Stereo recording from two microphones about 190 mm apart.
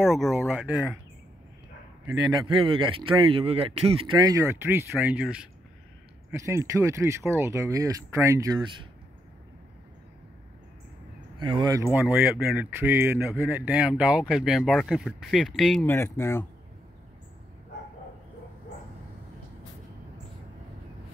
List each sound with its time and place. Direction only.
0.1 s speech: centre (ahead or behind)
2.0 s speech: 20° right (ahead or behind)
4.2 s speech: 15° right (ahead or behind)
6.3 s speech: 15° right (ahead or behind)
11.3 s speech: 25° right (ahead or behind)
12.0 s speech: 5° right (ahead or behind)
15.9 s speech: 15° left (ahead or behind)